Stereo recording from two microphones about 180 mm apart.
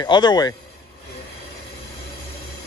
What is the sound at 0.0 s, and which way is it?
Speech, 25° left (ahead or behind).